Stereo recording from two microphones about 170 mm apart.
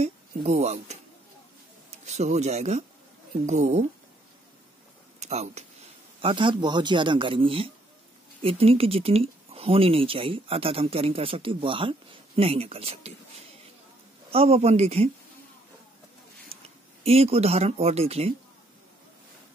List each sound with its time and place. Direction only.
0.0 s speech: 40° right (ahead or behind)
2.0 s speech: 40° right (ahead or behind)
5.2 s speech: 40° right (ahead or behind)
6.2 s speech: 30° right (ahead or behind)
14.3 s speech: 35° right (ahead or behind)
16.6 s speech: 35° right (ahead or behind)